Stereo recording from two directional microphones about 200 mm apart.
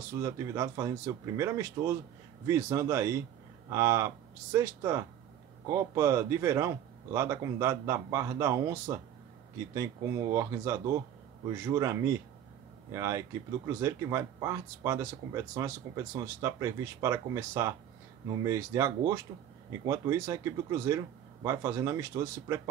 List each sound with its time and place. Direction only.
0.2 s speech: 15° right (ahead or behind)